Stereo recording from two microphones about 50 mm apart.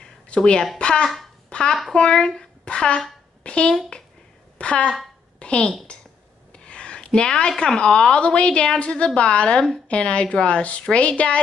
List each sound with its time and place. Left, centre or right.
0.3 s a woman's voice: centre